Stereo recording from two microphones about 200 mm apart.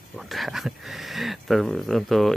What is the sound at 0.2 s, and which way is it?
Speech, centre (ahead or behind).